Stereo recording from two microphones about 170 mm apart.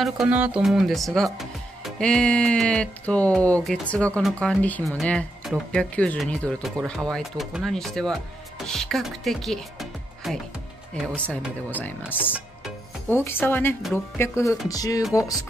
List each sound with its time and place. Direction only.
0.0 s speech: 5° right (ahead or behind)
12.3 s music: 10° right (ahead or behind)
13.1 s speech: 15° left (ahead or behind)
14.7 s music: 20° left (ahead or behind)